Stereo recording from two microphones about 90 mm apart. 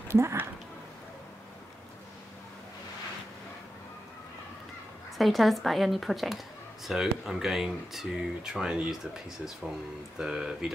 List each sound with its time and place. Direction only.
0.1 s speech: 30° right (ahead or behind)
5.1 s speech: centre (ahead or behind)